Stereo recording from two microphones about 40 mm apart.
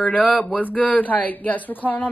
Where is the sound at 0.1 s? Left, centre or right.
Left.